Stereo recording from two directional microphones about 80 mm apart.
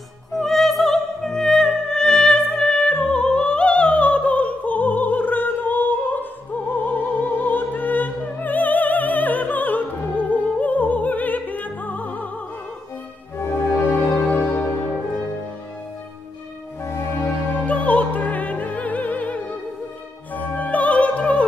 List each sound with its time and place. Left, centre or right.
0.4 s music: centre; by 12.3 s left
13.4 s music: left
16.8 s music: left
17.6 s opera: centre